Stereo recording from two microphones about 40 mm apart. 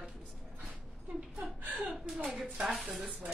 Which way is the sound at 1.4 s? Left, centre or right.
Right.